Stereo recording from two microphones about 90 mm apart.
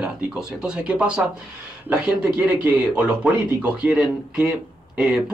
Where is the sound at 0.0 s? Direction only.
10° right (ahead or behind).